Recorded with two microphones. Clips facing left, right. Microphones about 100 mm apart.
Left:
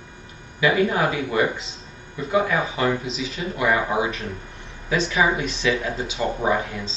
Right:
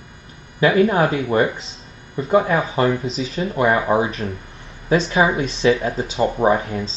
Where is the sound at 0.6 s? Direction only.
40° right (ahead or behind).